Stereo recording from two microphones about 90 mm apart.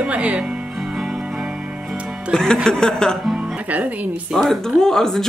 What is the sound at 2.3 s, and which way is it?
Speech, 5° left (ahead or behind).